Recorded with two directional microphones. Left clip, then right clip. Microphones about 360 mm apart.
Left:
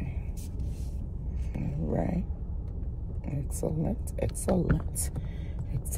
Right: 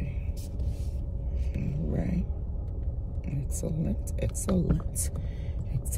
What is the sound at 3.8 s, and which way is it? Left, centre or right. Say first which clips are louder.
Speech: left 2 dB; centre.